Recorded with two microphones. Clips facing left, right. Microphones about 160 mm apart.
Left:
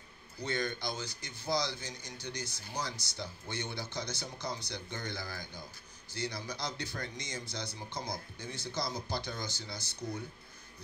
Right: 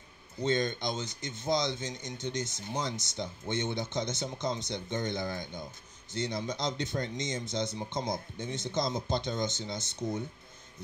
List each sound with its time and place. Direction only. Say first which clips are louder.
0.4 s speech: right 6 dB; 20° right (ahead or behind)